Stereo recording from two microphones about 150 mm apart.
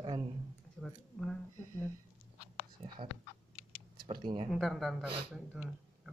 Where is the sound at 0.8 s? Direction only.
Centre (ahead or behind).